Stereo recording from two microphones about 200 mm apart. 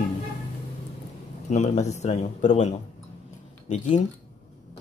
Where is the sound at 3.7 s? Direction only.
35° left (ahead or behind).